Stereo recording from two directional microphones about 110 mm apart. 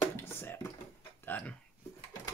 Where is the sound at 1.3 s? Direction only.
15° left (ahead or behind).